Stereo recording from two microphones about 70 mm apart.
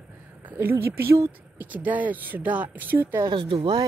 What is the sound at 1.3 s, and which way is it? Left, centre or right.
Speech, right.